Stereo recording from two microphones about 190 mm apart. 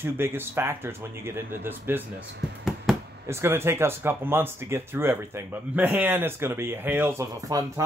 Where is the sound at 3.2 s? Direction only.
15° right (ahead or behind).